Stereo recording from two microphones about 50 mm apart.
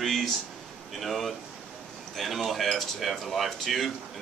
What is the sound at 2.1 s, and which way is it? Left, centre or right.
Speech, centre.